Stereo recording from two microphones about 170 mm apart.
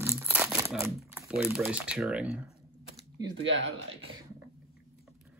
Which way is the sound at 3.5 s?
90° right.